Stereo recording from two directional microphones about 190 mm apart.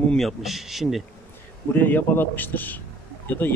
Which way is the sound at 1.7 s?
10° left (ahead or behind).